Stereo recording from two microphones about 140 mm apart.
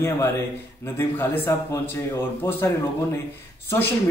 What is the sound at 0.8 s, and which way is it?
Speech, 15° left (ahead or behind).